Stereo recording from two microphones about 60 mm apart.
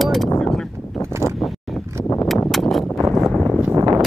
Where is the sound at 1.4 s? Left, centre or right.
Centre.